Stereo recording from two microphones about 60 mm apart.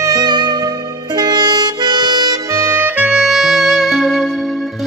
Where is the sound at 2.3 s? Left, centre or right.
Right.